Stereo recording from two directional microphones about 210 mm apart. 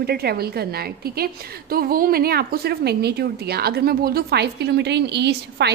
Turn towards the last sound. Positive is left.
turn(degrees=-55)  # may be behind; listen again after turning